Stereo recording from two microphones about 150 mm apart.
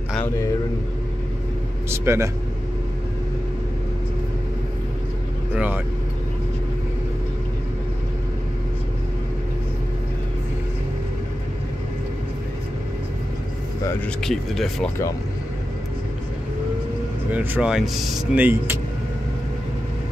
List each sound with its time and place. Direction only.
1.9 s speech: 20° right (ahead or behind)
5.5 s speech: 10° right (ahead or behind)
14.2 s speech: centre (ahead or behind)
17.3 s speech: 10° right (ahead or behind)